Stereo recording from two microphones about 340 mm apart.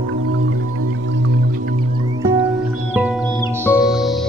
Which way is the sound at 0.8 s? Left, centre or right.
Right.